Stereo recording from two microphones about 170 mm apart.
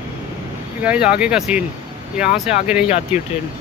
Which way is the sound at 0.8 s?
5° right (ahead or behind).